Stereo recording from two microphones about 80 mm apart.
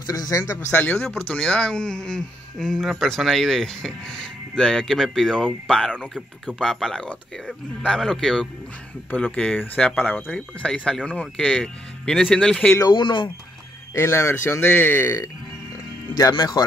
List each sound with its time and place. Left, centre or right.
0.0 s speech: left
0.7 s speech: left
1.0 s speech: centre
9.1 s speech: centre
12.9 s speech: left
13.9 s speech: left
16.2 s speech: left